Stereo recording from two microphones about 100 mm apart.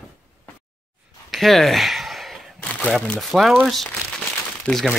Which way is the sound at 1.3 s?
Centre (ahead or behind).